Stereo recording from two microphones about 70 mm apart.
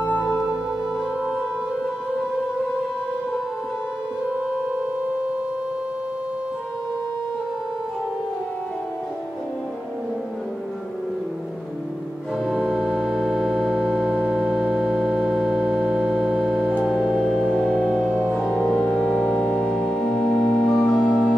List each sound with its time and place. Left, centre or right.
12.4 s organ: centre
16.8 s music: centre
18.7 s music: centre